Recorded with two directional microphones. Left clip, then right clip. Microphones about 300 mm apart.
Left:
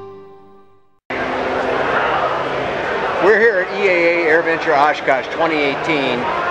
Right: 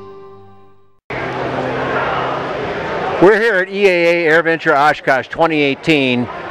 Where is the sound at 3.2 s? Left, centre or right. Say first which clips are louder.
Right 2 dB; right.